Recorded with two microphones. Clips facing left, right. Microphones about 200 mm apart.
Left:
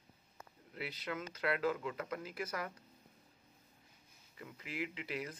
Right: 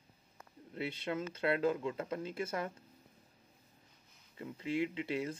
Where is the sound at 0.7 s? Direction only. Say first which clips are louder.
Right 5 dB; 25° right (ahead or behind).